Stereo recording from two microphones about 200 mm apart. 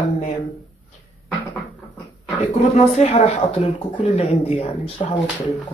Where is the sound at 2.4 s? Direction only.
35° left (ahead or behind).